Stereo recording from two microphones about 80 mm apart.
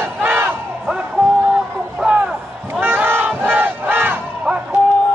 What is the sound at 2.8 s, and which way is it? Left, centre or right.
Crowd, right.